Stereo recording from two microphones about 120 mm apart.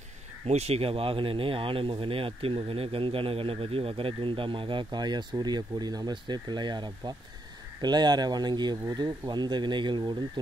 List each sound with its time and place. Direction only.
0.5 s speech: 60° right (ahead or behind); by 10.4 s 40° right (ahead or behind)